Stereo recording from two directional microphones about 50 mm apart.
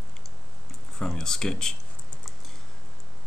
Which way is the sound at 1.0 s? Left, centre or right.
Centre.